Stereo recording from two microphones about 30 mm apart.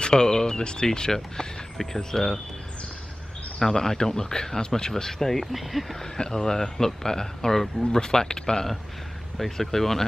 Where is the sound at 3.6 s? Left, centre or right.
Centre.